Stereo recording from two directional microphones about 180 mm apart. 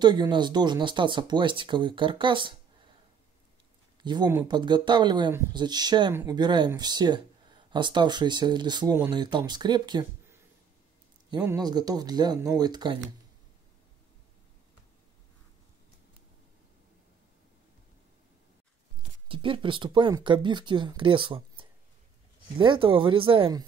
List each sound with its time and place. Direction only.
0.0 s speech: 25° right (ahead or behind)
4.0 s speech: 25° right (ahead or behind)
11.2 s speech: 20° right (ahead or behind)
19.2 s speech: 30° right (ahead or behind)